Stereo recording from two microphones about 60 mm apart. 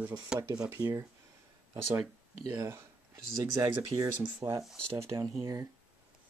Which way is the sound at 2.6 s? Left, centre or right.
Right.